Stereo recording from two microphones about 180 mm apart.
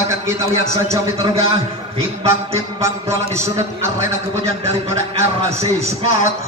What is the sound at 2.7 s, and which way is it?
A man's voice, 15° right (ahead or behind).